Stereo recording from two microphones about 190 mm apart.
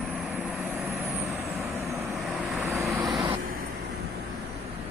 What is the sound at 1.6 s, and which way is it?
Vehicle, 15° right (ahead or behind).